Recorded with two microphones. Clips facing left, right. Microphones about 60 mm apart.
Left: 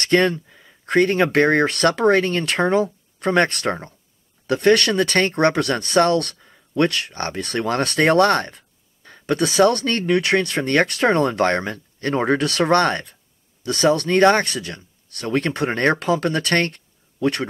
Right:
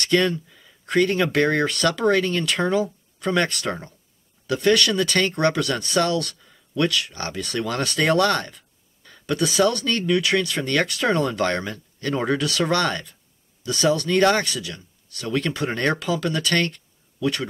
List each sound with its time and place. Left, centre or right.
0.0 s speech: left